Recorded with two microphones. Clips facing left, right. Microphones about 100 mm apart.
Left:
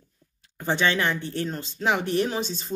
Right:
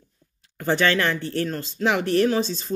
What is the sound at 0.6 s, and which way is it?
Speech, 20° left (ahead or behind).